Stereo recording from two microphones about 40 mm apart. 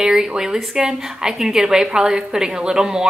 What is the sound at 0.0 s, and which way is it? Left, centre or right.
A woman's voice, centre.